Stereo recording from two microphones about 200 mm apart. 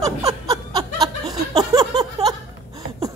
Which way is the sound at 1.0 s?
20° right (ahead or behind).